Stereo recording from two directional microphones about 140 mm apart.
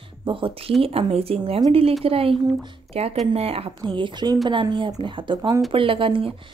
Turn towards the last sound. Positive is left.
turn(degrees=-40)  # may be behind; listen again after turning